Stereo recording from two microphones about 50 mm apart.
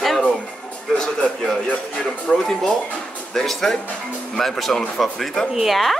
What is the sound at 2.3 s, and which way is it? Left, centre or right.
Speech, centre.